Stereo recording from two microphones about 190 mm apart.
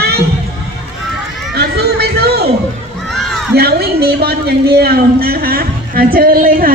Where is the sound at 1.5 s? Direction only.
55° right (ahead or behind).